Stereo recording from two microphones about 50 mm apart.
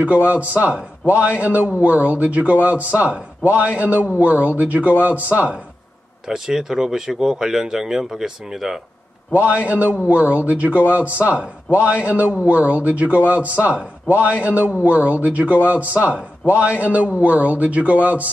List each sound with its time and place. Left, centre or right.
0.0 s a man's voice: right
6.2 s speech: centre
9.3 s a man's voice: right